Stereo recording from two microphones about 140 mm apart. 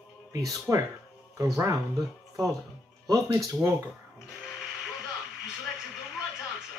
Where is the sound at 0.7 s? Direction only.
15° right (ahead or behind).